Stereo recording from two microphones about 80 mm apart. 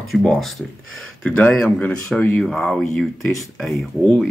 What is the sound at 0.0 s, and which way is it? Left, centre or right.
Speech, centre.